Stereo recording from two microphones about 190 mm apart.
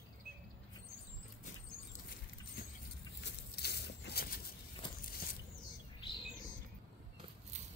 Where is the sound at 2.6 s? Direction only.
50° left (ahead or behind).